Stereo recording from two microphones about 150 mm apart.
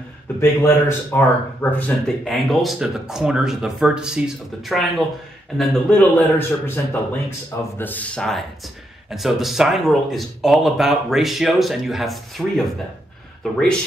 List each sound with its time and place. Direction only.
0.4 s speech: 20° left (ahead or behind)
2.3 s speech: centre (ahead or behind)